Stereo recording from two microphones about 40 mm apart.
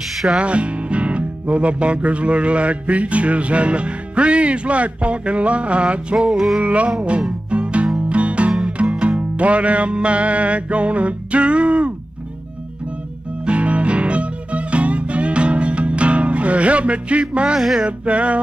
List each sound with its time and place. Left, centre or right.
0.4 s speech: right
6.3 s music: centre
6.6 s speech: right
7.0 s music: right
8.5 s music: right
9.4 s speech: right
13.5 s music: right
17.6 s music: centre
17.8 s speech: right